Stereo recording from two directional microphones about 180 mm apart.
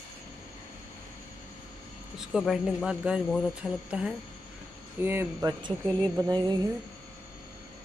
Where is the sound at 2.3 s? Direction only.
Centre (ahead or behind); by 6.6 s 25° right (ahead or behind).